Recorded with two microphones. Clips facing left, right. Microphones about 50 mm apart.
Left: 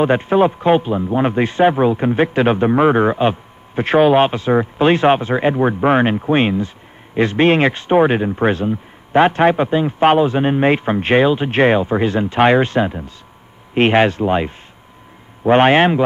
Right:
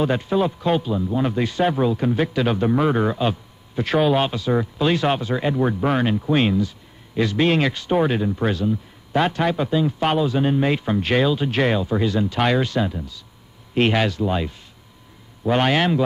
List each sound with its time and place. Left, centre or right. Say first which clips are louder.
0.0 s speech: left 7 dB; left